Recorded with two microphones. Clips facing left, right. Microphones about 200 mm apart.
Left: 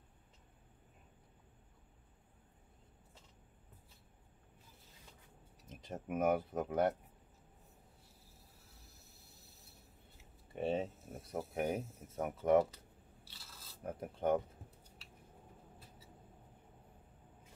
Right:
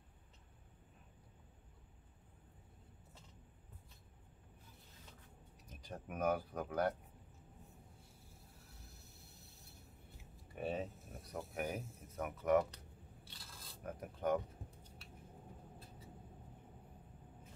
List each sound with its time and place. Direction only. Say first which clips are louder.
5.7 s speech: left 6 dB; 25° left (ahead or behind)
9.4 s mechanisms: right 1 dB; centre (ahead or behind)
10.5 s speech: left 5 dB; 25° left (ahead or behind)
13.3 s a sound: right 1 dB; 5° left (ahead or behind)
13.8 s speech: left 3 dB; 25° left (ahead or behind)